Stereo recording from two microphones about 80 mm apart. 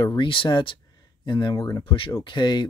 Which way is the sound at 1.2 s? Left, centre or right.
Left.